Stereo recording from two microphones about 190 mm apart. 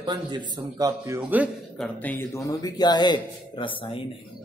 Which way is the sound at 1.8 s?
10° left (ahead or behind).